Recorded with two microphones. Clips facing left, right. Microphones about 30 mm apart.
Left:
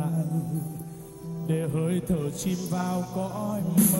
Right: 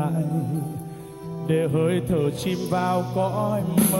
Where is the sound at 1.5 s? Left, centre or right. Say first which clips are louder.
Right 7 dB; right.